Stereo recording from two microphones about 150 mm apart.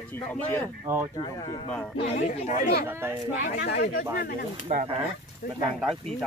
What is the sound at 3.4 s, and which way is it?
Speech, 90° left.